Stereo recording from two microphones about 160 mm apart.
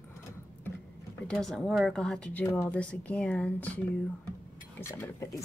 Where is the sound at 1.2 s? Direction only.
5° left (ahead or behind).